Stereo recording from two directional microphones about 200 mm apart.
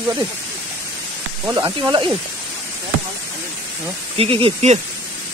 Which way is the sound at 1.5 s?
20° right (ahead or behind).